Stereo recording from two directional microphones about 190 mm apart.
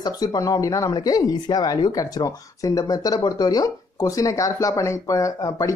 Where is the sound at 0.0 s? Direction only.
20° left (ahead or behind).